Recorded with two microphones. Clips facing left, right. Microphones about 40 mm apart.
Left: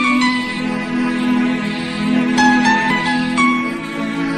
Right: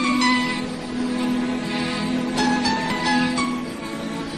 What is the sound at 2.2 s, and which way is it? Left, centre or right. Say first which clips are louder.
Zither: left 10 dB; left.